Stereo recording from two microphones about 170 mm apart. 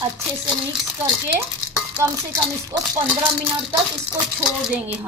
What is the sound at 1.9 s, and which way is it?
Speech, 20° right (ahead or behind).